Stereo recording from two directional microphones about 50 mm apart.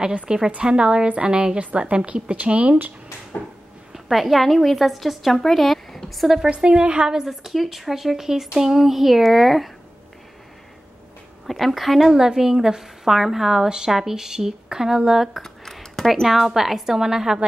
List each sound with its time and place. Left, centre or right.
0.5 s a woman's voice: right
3.9 s a woman's voice: centre
6.5 s a woman's voice: centre
11.4 s speech: centre
15.4 s a sound: centre
16.1 s a woman's voice: centre